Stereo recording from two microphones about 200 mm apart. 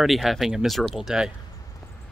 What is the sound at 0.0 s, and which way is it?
Speech, centre (ahead or behind).